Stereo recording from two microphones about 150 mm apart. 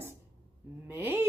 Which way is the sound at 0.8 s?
15° right (ahead or behind).